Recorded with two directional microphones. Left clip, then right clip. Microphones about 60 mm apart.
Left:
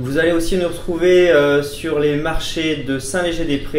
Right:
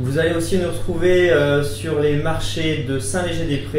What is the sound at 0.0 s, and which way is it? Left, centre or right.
Speech, left.